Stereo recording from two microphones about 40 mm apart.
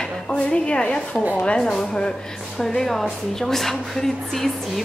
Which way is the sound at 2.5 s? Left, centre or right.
Centre.